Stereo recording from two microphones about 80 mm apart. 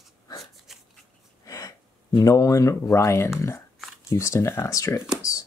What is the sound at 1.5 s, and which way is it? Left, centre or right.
Speech, left.